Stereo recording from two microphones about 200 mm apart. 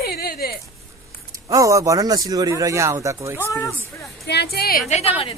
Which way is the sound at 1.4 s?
15° right (ahead or behind).